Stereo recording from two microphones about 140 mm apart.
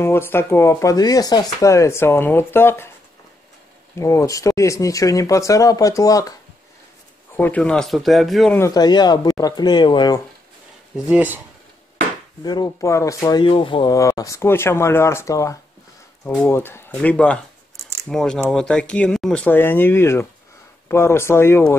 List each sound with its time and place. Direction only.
0.0 s speech: 15° left (ahead or behind)
4.0 s speech: 20° left (ahead or behind)
7.3 s speech: 10° left (ahead or behind)
8.5 s speech: 25° left (ahead or behind)
11.1 s speech: 10° right (ahead or behind)
12.4 s speech: 30° left (ahead or behind)
13.4 s speech: 40° left (ahead or behind)
13.9 s speech: 25° left (ahead or behind)